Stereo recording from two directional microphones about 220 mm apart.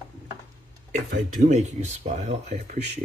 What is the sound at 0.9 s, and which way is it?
Speech, 35° right (ahead or behind).